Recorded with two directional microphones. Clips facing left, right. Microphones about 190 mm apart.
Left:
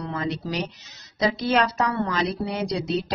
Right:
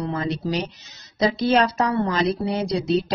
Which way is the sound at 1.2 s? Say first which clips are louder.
Right 3 dB; 30° right (ahead or behind).